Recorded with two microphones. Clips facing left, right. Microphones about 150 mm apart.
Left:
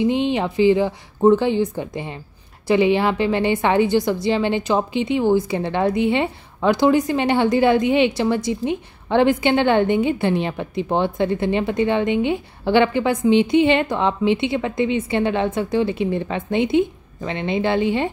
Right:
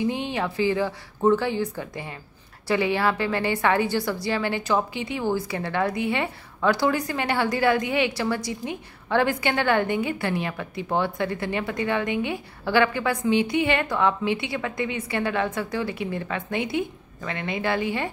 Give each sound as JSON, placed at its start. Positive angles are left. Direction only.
{"t": 0.0, "sound": "a woman's voice", "side_deg": 20}